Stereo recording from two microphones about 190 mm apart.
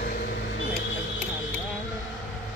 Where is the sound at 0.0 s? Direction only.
55° left (ahead or behind).